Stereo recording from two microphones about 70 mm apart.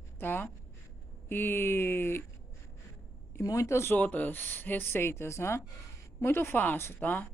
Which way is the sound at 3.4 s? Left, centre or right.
Left.